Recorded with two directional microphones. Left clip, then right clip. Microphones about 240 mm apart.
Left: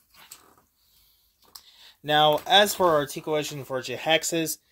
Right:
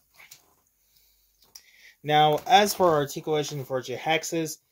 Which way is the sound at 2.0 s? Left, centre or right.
Centre.